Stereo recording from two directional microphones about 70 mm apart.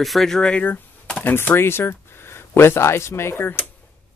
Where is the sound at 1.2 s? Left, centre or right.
Left.